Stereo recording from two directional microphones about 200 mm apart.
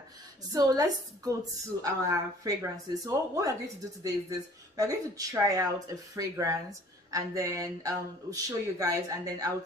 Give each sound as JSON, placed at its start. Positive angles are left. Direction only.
{"t": 0.5, "sound": "speech", "side_deg": -20}